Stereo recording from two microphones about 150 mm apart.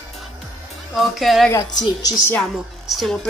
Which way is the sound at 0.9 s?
Centre (ahead or behind).